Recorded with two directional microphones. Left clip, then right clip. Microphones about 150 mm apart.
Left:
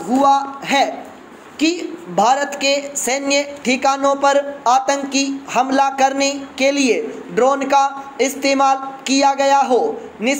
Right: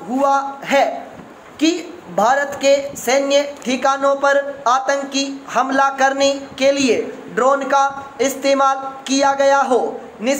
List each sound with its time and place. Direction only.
0.2 s a woman's voice: 20° left (ahead or behind)